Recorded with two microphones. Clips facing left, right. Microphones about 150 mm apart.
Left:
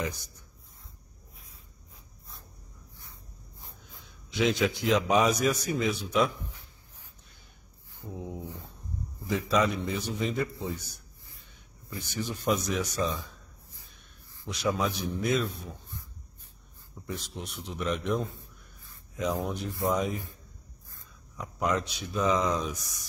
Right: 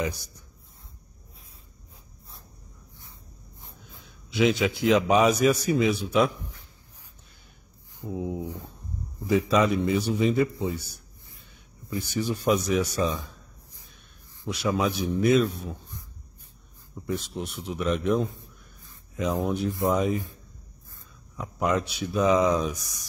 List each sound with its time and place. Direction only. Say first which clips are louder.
3.6 s a man's voice: right 2 dB; centre (ahead or behind)
8.0 s a man's voice: right 7 dB; 10° right (ahead or behind)
12.1 s a man's voice: right 5 dB; 10° right (ahead or behind)
13.0 s speech: right 4 dB; 20° right (ahead or behind)
14.5 s speech: right 3 dB; 5° right (ahead or behind)
17.0 s speech: right 7 dB; centre (ahead or behind)
19.4 s speech: right 5 dB; 5° right (ahead or behind)